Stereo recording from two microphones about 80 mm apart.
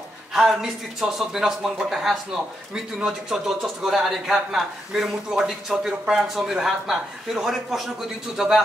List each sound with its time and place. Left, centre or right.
0.3 s a man's voice: centre